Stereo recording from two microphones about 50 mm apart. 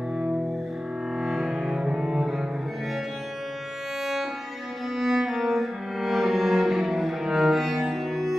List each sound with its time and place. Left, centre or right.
1.2 s cello: centre
4.0 s music: centre
4.9 s cello: centre